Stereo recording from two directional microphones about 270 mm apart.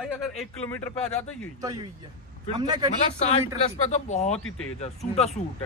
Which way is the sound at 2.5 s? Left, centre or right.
Centre.